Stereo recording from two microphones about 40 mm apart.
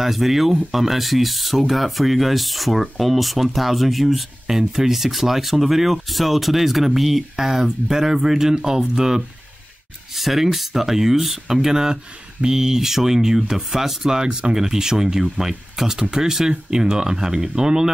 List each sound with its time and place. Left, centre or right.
0.0 s speech: centre